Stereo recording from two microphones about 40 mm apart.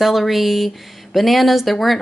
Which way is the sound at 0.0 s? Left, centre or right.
Centre.